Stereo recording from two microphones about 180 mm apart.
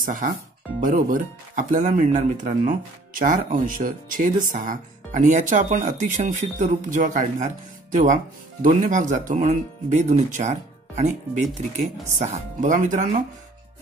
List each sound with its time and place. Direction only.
0.0 s speech: 50° right (ahead or behind)